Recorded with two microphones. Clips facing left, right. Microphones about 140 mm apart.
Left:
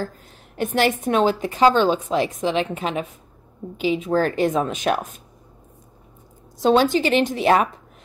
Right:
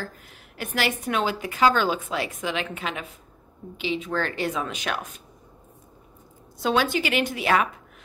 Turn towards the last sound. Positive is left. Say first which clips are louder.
# left 5 dB
turn(degrees=40)  # may be behind; listen again after turning